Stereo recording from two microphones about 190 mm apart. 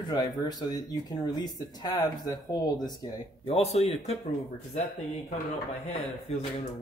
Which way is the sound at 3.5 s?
35° left (ahead or behind).